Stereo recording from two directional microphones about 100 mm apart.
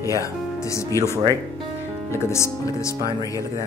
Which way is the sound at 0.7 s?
30° left (ahead or behind).